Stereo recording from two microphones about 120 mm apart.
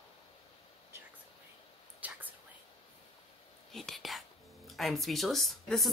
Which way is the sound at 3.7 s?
Centre (ahead or behind).